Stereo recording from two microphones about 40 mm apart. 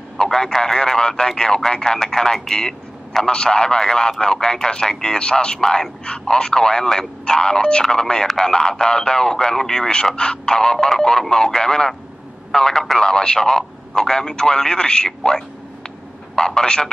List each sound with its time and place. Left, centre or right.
0.2 s speech: centre